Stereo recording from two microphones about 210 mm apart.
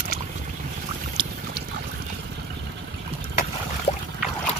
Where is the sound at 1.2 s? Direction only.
20° right (ahead or behind).